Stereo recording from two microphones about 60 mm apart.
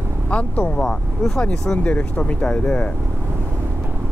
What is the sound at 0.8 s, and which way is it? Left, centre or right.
Speech, centre.